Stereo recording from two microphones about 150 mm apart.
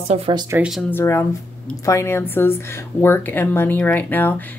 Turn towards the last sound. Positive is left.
turn(degrees=15)  # may be behind; listen again after turning